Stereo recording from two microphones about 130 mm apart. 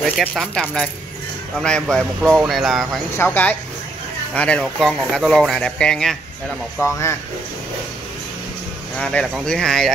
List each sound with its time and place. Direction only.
0.4 s speech: 5° left (ahead or behind)
3.2 s speech: 15° left (ahead or behind)
6.8 s speech: 20° left (ahead or behind)
8.9 s speech: 5° left (ahead or behind)